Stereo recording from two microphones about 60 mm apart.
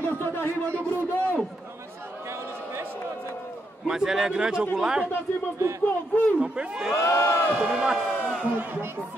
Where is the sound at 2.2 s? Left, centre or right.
Right.